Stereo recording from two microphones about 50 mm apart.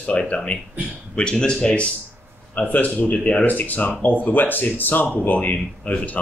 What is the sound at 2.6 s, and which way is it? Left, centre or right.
Speech, left.